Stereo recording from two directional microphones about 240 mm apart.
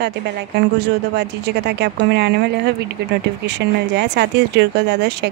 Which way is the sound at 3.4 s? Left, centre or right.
Right.